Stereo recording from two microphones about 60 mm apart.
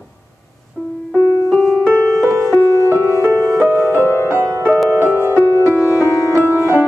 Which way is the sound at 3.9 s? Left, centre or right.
Left.